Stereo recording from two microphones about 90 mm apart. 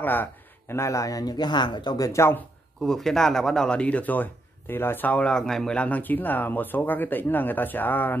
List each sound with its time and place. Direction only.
0.0 s speech: 20° left (ahead or behind); by 2.2 s 40° left (ahead or behind)
2.8 s speech: 5° left (ahead or behind); by 8.2 s 20° left (ahead or behind)